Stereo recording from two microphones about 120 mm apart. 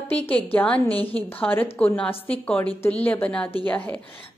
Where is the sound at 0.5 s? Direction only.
10° left (ahead or behind).